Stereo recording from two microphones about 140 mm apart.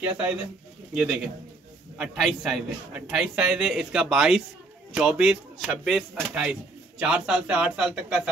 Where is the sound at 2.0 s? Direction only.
5° right (ahead or behind).